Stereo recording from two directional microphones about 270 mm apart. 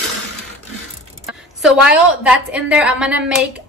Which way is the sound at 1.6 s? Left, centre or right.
Centre.